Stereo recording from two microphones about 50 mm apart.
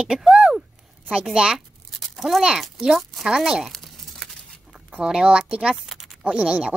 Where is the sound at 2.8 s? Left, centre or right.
Centre.